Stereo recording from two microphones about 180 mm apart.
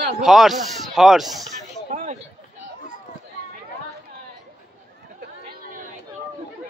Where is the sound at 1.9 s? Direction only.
45° right (ahead or behind).